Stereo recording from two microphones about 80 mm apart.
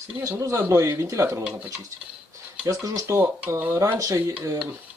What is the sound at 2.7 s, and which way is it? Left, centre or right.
Speech, right.